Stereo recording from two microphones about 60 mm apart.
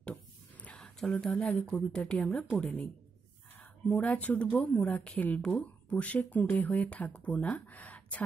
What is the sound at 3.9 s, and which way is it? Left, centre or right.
Speech, left.